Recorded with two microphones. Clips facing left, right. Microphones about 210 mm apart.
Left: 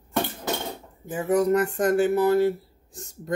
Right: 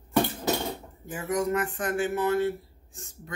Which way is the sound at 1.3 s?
40° left (ahead or behind).